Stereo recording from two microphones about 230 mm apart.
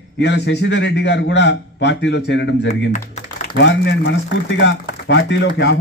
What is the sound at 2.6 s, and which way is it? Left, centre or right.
Speech, left.